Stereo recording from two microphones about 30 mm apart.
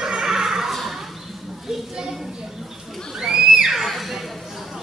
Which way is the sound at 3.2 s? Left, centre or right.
Centre.